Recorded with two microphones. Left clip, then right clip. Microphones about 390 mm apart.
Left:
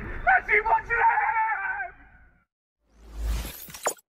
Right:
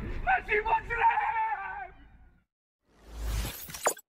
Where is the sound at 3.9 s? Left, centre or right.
Centre.